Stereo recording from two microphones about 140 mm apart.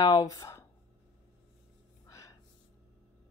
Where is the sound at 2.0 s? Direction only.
20° left (ahead or behind).